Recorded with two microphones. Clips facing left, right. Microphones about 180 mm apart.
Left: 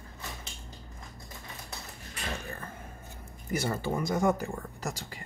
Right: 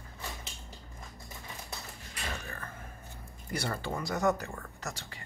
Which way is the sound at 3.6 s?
20° left (ahead or behind).